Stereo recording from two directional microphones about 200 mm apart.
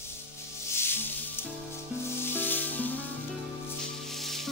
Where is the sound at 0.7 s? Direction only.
10° left (ahead or behind).